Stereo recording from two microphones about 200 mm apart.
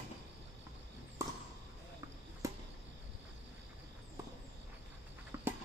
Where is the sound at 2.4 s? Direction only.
15° right (ahead or behind).